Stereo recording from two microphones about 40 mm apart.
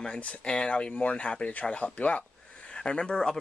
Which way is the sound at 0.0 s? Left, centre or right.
Left.